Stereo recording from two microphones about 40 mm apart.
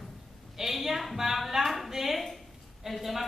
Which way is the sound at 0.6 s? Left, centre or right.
Centre.